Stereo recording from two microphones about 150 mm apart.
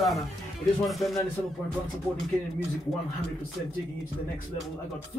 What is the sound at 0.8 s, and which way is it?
Speech, centre (ahead or behind).